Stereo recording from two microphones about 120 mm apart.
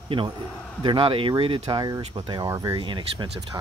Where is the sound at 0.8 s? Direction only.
50° right (ahead or behind).